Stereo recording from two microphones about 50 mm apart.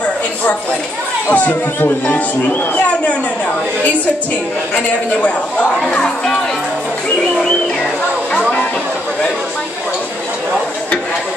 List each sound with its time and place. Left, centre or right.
1.3 s speech: left
5.9 s speech: centre
8.3 s speech: left